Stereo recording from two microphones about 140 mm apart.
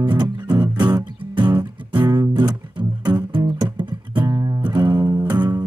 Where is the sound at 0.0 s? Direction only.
30° right (ahead or behind).